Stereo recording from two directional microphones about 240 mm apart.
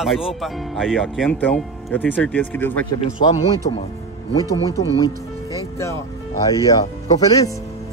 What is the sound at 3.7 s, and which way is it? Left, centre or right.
Speech, left.